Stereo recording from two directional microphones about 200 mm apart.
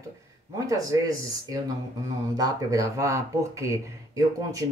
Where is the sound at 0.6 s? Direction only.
15° right (ahead or behind).